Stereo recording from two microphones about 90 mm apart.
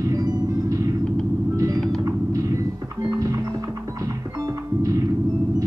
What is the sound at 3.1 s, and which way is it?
Music, 35° right (ahead or behind).